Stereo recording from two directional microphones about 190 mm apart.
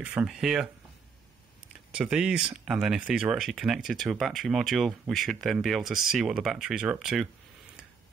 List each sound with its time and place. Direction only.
0.0 s speech: 5° right (ahead or behind)
1.9 s speech: 5° right (ahead or behind)